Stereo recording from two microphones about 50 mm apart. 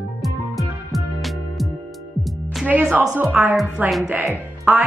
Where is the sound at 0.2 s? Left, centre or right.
Centre.